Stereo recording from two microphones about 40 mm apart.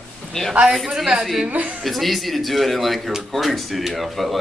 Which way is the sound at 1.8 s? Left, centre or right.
Centre.